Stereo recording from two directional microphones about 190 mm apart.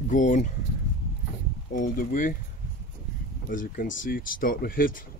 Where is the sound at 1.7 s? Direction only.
45° left (ahead or behind).